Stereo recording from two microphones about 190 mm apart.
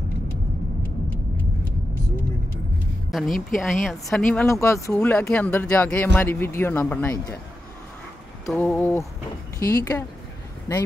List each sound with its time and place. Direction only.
3.1 s speech: centre (ahead or behind)
4.5 s a man's voice: 15° left (ahead or behind)
8.5 s a man's voice: 10° left (ahead or behind)